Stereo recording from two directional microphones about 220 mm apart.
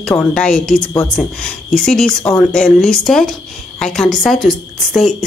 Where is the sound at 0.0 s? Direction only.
5° left (ahead or behind).